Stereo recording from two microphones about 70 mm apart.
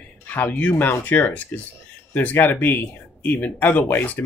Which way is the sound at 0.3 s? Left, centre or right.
Left.